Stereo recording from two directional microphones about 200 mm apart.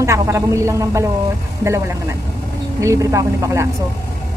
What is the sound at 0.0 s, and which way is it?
A woman's voice, 15° right (ahead or behind).